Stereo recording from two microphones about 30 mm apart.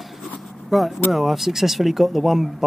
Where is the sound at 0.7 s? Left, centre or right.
Centre.